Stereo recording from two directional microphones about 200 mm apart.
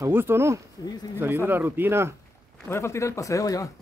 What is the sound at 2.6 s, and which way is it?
Speech, 15° left (ahead or behind).